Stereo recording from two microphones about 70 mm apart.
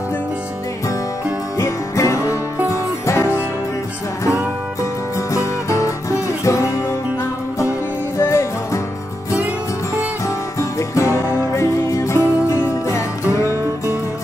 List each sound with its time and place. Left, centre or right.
1.6 s music: left
5.3 s music: left
8.2 s music: left
10.2 s music: left